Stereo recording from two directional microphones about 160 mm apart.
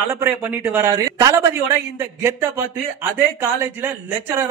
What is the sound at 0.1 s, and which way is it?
A man's voice, 15° right (ahead or behind).